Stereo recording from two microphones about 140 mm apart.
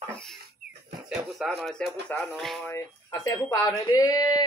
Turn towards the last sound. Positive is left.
turn(degrees=25)  # may be behind; listen again after turning